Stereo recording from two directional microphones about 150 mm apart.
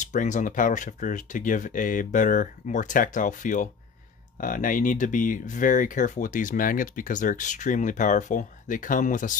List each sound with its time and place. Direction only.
0.0 s speech: 55° left (ahead or behind)